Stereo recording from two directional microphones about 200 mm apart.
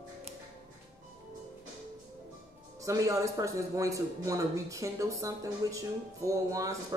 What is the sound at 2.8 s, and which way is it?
A man's voice, 15° right (ahead or behind).